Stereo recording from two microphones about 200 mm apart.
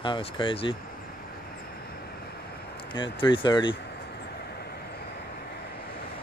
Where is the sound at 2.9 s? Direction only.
25° left (ahead or behind).